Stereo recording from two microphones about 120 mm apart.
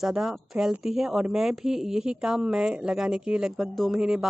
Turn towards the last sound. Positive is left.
turn(degrees=-5)  # may be behind; listen again after turning